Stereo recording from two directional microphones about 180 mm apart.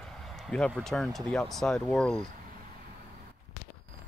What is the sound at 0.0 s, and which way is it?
Vehicle, centre (ahead or behind).